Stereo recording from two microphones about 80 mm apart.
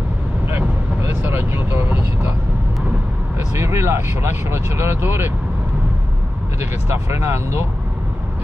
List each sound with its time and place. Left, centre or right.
0.5 s vehicle: right
3.5 s speech: right
6.9 s speech: right